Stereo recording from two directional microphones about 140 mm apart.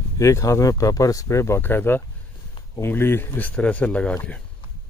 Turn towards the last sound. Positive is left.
turn(degrees=10)  # may be behind; listen again after turning